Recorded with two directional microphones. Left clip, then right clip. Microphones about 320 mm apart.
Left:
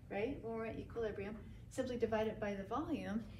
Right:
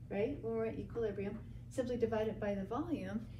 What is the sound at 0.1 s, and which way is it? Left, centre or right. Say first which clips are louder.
A woman's voice: right 4 dB; centre.